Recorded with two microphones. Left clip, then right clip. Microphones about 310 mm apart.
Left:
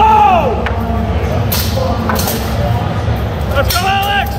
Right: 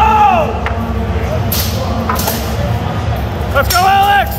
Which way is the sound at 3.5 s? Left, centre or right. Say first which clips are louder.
Right 4 dB; centre.